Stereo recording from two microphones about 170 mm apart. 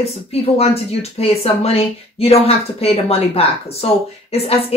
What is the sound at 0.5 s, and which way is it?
A woman's voice, 35° left (ahead or behind).